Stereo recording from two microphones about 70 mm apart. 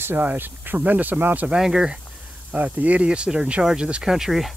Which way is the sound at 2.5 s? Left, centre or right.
Right.